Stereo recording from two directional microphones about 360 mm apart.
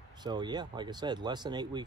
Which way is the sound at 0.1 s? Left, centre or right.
Centre.